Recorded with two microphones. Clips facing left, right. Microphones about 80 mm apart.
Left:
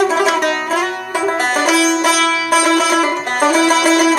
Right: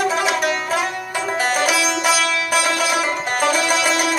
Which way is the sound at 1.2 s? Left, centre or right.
Left.